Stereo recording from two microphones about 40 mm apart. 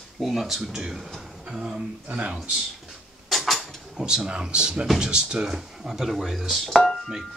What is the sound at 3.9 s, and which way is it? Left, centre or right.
Speech, centre.